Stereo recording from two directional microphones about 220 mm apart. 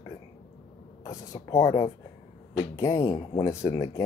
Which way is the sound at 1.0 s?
15° left (ahead or behind).